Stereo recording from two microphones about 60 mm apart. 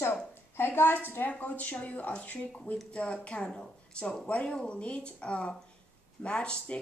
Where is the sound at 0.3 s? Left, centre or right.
Left.